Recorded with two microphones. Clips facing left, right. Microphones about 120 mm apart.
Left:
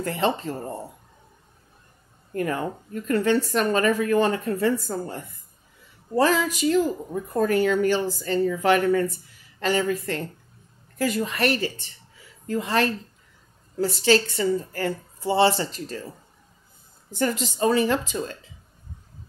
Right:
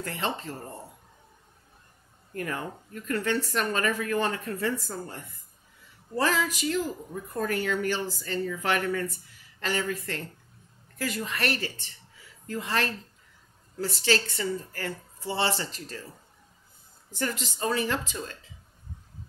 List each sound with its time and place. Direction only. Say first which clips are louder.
0.0 s a woman's voice: left 8 dB; 20° left (ahead or behind)
2.3 s a woman's voice: left 7 dB; 25° left (ahead or behind)
6.1 s a woman's voice: left 6 dB; 25° left (ahead or behind)
17.1 s a woman's voice: left 7 dB; 20° left (ahead or behind)